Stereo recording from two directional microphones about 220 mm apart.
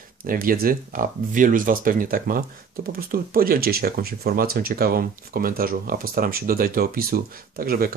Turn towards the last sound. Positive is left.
turn(degrees=-40)  # may be behind; listen again after turning